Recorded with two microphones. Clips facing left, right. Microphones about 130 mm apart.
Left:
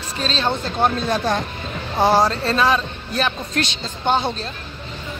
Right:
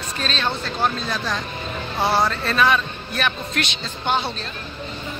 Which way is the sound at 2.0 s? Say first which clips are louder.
Left 4 dB; 40° left (ahead or behind).